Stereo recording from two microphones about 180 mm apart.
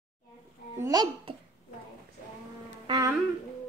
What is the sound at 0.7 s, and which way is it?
Speech, 20° right (ahead or behind).